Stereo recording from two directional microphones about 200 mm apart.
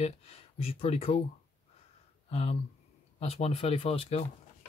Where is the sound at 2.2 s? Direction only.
30° left (ahead or behind).